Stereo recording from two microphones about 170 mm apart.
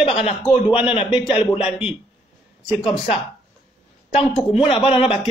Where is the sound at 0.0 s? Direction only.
35° left (ahead or behind).